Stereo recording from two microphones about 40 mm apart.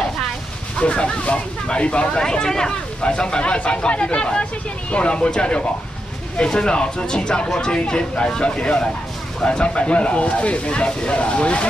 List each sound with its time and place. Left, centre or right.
0.7 s speech: left
2.2 s speech: centre